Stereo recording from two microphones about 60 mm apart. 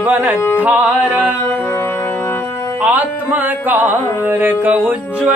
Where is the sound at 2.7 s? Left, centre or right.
Right.